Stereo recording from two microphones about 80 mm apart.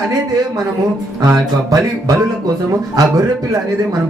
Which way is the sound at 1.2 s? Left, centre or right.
Right.